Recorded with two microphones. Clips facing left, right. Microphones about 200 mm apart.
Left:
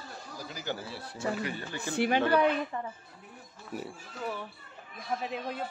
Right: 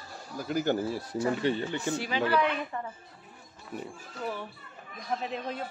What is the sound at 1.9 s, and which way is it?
Speech, 60° left (ahead or behind).